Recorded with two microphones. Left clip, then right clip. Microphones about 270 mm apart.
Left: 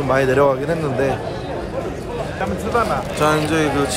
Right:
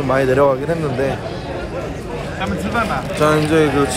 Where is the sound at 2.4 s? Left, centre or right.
Left.